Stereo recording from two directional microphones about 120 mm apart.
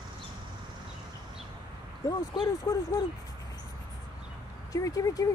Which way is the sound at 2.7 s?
20° left (ahead or behind).